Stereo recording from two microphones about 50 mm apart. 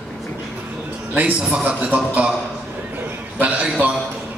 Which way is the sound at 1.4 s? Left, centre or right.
Right.